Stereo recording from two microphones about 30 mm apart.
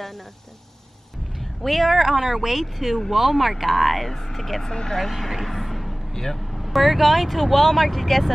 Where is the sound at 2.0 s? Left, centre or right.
Centre.